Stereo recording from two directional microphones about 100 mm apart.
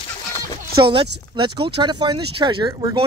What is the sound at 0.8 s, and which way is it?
Speech, 55° right (ahead or behind).